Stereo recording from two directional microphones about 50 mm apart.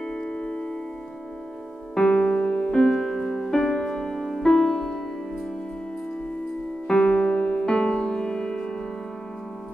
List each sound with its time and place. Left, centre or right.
0.0 s music: left
2.0 s music: centre
6.9 s music: centre